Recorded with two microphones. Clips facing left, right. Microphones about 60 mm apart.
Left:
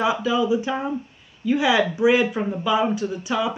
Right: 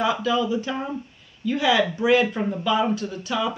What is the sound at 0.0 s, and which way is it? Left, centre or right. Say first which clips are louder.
Speech: left 1 dB; centre.